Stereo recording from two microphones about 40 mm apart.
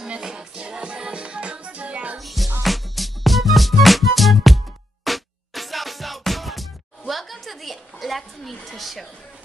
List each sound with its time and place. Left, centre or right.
0.2 s music: centre
2.1 s music: centre